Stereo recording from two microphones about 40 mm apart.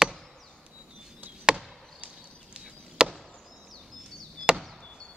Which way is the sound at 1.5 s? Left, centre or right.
Right.